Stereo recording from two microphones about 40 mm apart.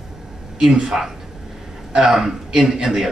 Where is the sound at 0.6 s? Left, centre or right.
Centre.